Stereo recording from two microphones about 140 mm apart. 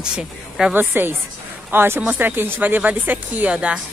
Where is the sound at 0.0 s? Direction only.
5° right (ahead or behind).